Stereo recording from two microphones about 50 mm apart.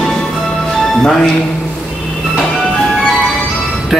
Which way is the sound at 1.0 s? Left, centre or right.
Centre.